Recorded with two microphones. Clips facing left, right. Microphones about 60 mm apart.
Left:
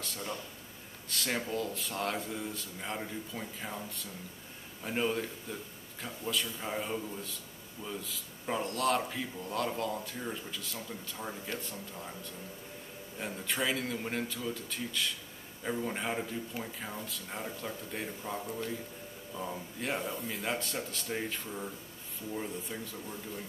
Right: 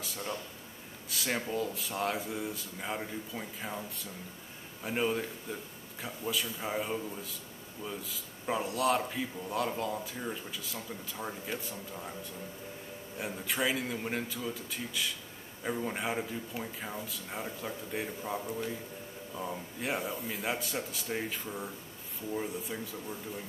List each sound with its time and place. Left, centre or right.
0.0 s a man's voice: centre
13.2 s a man's voice: centre